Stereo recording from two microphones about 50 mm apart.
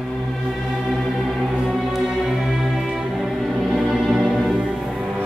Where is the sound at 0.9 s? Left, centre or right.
Centre.